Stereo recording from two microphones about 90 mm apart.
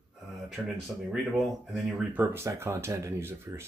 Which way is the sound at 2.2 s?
30° right (ahead or behind).